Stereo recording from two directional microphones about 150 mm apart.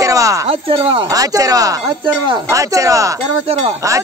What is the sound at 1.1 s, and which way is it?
Speech, 25° right (ahead or behind).